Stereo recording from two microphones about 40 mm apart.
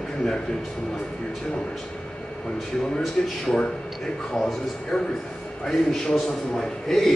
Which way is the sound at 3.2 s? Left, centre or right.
Centre.